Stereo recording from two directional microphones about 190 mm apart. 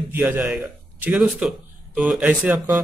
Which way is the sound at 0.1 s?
10° right (ahead or behind).